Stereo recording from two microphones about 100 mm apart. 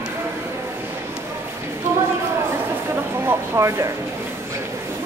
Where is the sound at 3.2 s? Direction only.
30° right (ahead or behind).